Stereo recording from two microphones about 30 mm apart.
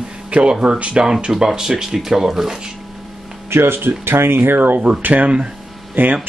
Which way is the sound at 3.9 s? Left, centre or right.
Right.